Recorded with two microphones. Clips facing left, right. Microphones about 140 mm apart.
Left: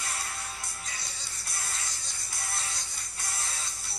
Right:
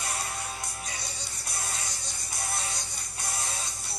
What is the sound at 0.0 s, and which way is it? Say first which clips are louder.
Music: right 4 dB; 20° right (ahead or behind).